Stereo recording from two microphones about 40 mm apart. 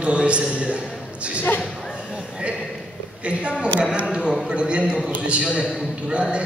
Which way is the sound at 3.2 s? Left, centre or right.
Right.